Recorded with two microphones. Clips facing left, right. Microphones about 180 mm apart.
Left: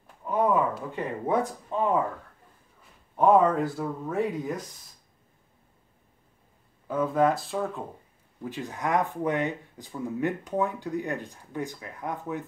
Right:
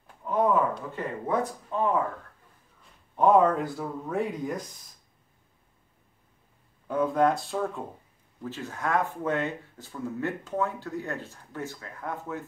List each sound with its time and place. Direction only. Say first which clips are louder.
0.3 s a sound: even; 10° left (ahead or behind)
1.2 s speech: left 2 dB; 20° left (ahead or behind)
3.2 s speech: even; centre (ahead or behind)
6.9 s speech: even; centre (ahead or behind)
8.5 s speech: left 1 dB; 15° left (ahead or behind)